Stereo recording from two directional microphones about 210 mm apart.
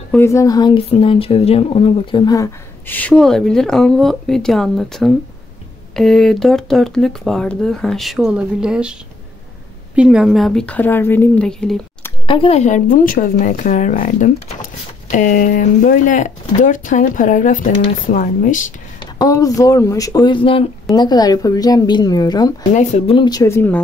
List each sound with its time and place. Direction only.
0.1 s speech: 15° left (ahead or behind); by 8.9 s 5° right (ahead or behind)
9.9 s speech: 5° right (ahead or behind)
12.3 s speech: 25° left (ahead or behind)
19.1 s a woman's voice: 15° left (ahead or behind)
22.8 s a woman's voice: 35° left (ahead or behind); by 23.8 s 10° left (ahead or behind)